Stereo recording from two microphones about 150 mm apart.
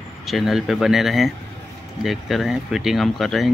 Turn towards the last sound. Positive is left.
turn(degrees=0)  # may be behind; listen again after turning